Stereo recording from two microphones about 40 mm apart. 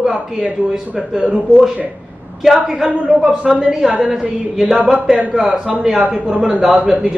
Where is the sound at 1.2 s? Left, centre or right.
Right.